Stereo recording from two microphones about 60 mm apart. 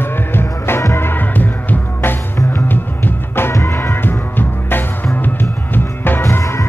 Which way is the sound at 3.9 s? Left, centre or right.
Left.